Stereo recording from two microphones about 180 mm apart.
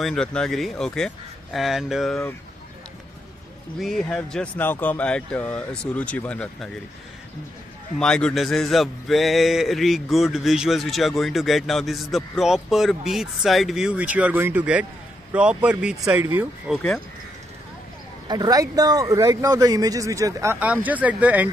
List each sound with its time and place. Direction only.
0.0 s a man's voice: 5° left (ahead or behind)
3.8 s a man's voice: 5° left (ahead or behind)
8.0 s a man's voice: 5° left (ahead or behind); by 16.7 s 10° right (ahead or behind)
16.7 s a man's voice: 5° left (ahead or behind)
18.3 s speech: 20° right (ahead or behind)